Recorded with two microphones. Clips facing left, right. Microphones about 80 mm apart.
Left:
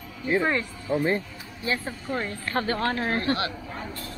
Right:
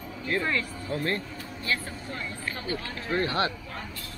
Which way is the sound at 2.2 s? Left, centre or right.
Left.